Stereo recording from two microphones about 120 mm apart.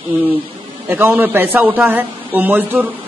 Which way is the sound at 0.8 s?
15° right (ahead or behind).